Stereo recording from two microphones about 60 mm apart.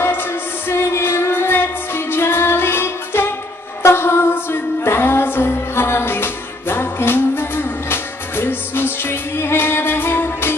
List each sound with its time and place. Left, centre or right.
0.0 s music: left